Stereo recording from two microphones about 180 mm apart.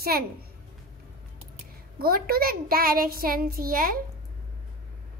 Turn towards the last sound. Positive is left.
turn(degrees=-55)  # may be behind; listen again after turning